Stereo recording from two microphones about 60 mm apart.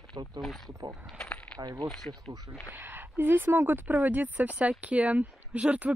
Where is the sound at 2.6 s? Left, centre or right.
Right.